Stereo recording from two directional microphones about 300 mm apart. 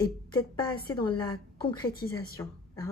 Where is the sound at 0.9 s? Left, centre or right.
Centre.